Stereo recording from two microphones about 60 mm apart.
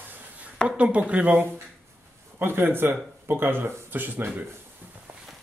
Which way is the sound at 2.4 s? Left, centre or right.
Right.